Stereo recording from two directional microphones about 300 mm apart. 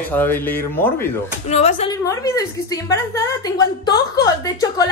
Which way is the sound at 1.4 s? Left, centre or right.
Left.